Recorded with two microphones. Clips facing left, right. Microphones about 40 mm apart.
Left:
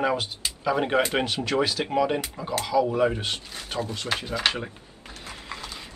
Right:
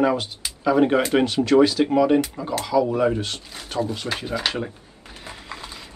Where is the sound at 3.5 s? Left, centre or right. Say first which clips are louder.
Right 4 dB; centre.